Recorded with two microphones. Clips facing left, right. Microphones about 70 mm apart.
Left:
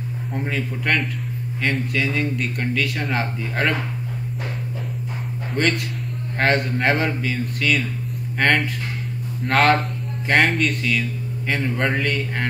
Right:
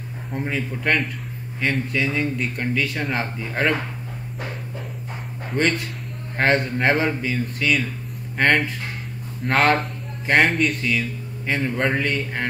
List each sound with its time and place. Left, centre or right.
0.3 s speech: centre
5.5 s a man's voice: centre